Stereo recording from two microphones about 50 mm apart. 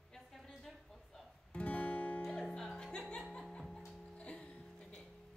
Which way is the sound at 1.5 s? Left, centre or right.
Left.